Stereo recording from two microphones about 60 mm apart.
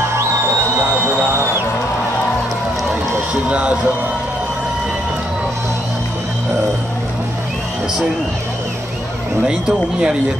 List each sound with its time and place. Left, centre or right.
0.7 s music: right
3.4 s a man's voice: right
9.5 s speech: centre